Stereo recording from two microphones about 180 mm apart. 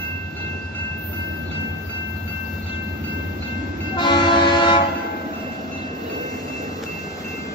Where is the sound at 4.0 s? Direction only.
25° left (ahead or behind).